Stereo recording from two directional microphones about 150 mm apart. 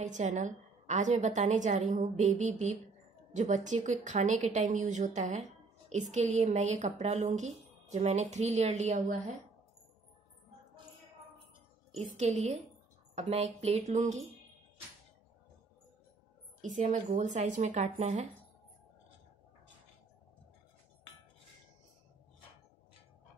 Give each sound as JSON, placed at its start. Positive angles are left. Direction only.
{"t": 0.0, "sound": "a woman's voice", "side_deg": -55}
{"t": 12.2, "sound": "a woman's voice", "side_deg": -50}
{"t": 16.6, "sound": "a woman's voice", "side_deg": -55}